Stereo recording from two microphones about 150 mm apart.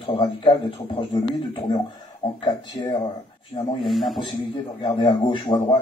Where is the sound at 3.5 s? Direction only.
30° left (ahead or behind).